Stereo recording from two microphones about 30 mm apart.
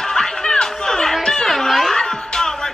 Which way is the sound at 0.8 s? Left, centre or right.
Centre.